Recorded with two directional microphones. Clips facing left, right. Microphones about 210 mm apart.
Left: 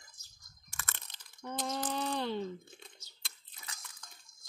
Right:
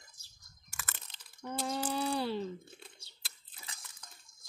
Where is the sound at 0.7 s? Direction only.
5° right (ahead or behind).